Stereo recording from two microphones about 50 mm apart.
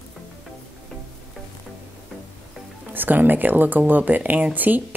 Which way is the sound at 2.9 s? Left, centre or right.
Right.